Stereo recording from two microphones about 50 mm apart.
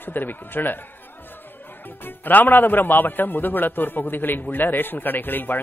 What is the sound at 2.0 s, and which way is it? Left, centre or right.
A man's voice, left.